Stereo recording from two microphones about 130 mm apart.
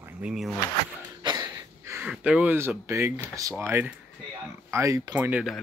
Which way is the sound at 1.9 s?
10° right (ahead or behind).